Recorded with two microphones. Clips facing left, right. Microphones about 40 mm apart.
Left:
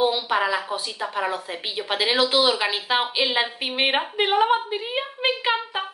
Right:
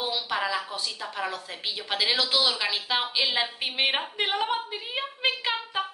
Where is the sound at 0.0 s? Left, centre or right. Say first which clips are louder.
Left 7 dB; left.